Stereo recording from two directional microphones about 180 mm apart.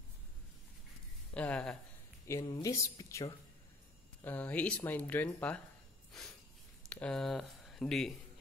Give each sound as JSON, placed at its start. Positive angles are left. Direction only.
{"t": 1.3, "sound": "a sound", "side_deg": 5}
{"t": 2.4, "sound": "speech", "side_deg": 20}
{"t": 6.9, "sound": "speech", "side_deg": 5}